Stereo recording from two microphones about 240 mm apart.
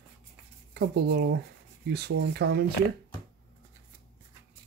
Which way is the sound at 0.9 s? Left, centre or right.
Right.